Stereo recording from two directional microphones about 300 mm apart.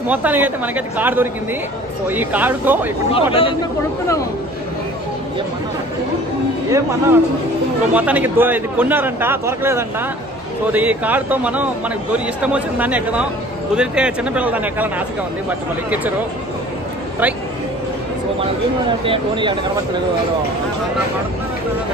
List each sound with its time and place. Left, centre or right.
0.1 s speech: centre
3.1 s speech: centre
6.7 s a man's voice: centre
19.0 s a man's voice: centre